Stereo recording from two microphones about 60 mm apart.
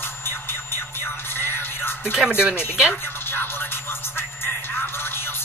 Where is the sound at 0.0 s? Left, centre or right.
Left.